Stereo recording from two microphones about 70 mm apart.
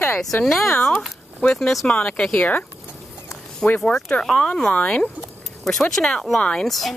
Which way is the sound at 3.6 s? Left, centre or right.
Left.